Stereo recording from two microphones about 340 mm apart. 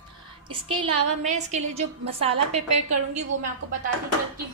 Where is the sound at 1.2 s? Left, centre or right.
Right.